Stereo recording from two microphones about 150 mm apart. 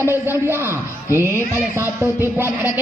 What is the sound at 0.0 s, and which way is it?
A man's voice, 15° right (ahead or behind).